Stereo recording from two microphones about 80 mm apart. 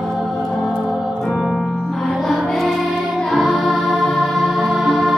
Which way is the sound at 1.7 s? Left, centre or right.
Centre.